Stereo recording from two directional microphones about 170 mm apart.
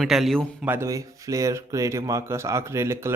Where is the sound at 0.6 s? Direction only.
15° right (ahead or behind).